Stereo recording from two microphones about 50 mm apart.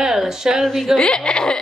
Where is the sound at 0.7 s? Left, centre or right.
Centre.